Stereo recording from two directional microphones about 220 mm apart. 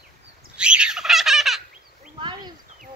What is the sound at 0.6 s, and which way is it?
Turkey, 5° right (ahead or behind).